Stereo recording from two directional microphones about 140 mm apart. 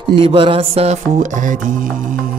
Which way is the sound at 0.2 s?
40° right (ahead or behind).